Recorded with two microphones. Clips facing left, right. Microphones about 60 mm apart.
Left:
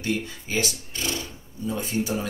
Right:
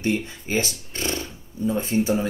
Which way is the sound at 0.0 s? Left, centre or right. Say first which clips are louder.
Right 3 dB; right.